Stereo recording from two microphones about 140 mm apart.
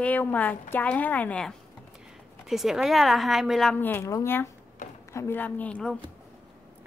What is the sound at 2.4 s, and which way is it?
A woman's voice, centre (ahead or behind).